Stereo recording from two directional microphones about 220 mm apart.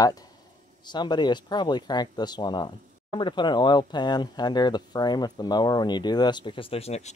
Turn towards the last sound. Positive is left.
turn(degrees=30)  # may be behind; listen again after turning